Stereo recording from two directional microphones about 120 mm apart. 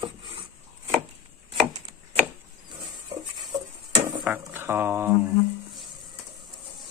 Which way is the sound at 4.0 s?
15° right (ahead or behind).